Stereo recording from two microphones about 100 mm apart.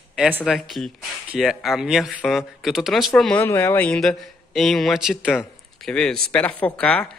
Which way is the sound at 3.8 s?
5° left (ahead or behind).